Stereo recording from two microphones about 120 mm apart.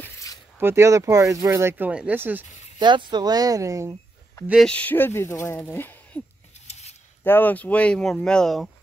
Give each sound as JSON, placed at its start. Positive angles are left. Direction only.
{"t": 0.0, "sound": "a sound", "side_deg": 25}
{"t": 0.6, "sound": "speech", "side_deg": -20}
{"t": 2.8, "sound": "speech", "side_deg": -40}
{"t": 4.6, "sound": "speech", "side_deg": 10}
{"t": 6.7, "sound": "a sound", "side_deg": 65}
{"t": 7.2, "sound": "speech", "side_deg": 15}